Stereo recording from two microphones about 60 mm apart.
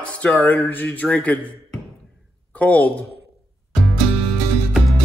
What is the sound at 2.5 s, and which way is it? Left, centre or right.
Speech, left.